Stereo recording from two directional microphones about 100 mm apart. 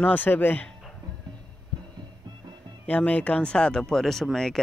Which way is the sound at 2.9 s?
15° left (ahead or behind).